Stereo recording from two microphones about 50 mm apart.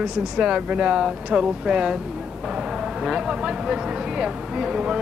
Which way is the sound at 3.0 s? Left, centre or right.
Centre.